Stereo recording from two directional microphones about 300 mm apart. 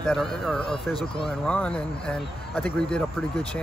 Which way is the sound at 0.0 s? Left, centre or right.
Centre.